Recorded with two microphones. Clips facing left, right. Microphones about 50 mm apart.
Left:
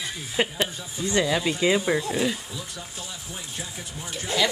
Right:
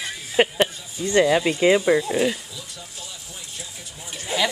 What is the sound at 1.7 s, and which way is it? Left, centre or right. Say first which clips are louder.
Speech: right 5 dB; centre.